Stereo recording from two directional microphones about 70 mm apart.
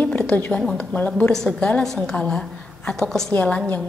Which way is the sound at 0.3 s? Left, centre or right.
Left.